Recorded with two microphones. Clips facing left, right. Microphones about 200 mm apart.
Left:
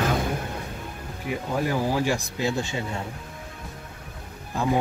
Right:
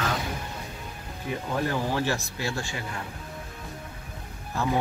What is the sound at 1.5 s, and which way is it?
Speech, 10° left (ahead or behind).